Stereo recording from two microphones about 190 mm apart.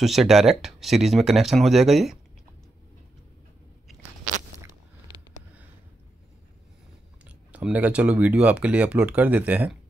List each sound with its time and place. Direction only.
0.0 s speech: centre (ahead or behind)
4.6 s a sound: 25° right (ahead or behind)
7.2 s speech: 5° right (ahead or behind)